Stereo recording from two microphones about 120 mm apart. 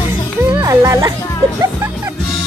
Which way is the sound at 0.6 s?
25° right (ahead or behind).